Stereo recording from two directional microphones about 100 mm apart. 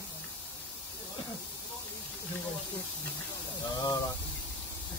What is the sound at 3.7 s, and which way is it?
Speech, 40° left (ahead or behind).